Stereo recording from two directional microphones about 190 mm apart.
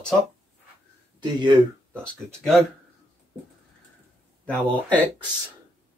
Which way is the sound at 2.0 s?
5° left (ahead or behind).